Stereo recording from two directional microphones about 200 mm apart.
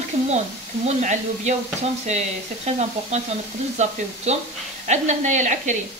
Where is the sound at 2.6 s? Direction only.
35° right (ahead or behind).